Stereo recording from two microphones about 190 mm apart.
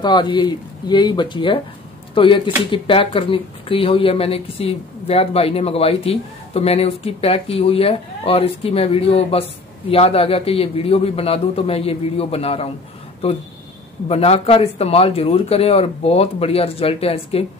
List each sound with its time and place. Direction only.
0.0 s speech: 25° left (ahead or behind)
14.0 s speech: 30° left (ahead or behind)